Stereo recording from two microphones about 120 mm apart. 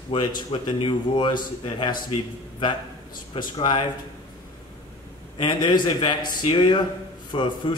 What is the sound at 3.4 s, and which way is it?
Speech, 40° left (ahead or behind).